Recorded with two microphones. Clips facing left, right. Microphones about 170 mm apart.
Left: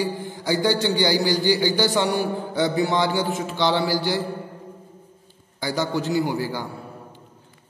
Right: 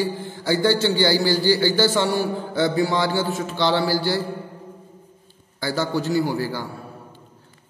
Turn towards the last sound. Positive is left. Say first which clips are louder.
# right 1 dB
turn(degrees=15)  # may be behind; listen again after turning